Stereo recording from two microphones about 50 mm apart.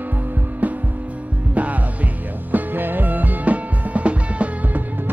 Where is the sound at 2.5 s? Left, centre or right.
Right.